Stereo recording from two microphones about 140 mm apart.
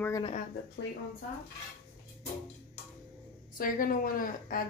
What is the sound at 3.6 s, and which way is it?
A woman's voice, 90° left.